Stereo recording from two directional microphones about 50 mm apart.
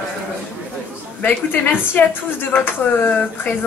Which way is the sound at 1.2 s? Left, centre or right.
Left.